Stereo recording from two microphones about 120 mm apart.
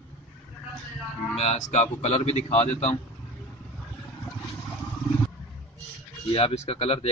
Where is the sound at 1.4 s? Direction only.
75° left (ahead or behind); by 2.9 s 55° left (ahead or behind).